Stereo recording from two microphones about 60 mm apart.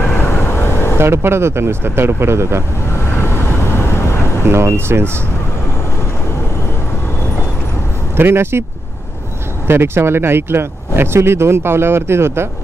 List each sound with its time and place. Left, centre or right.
0.1 s vehicle: left
0.9 s speech: right
2.9 s vehicle: left
4.5 s speech: right
8.2 s speech: right
9.7 s speech: right